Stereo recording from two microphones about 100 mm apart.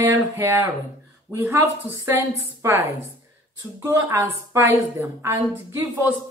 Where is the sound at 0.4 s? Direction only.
30° right (ahead or behind).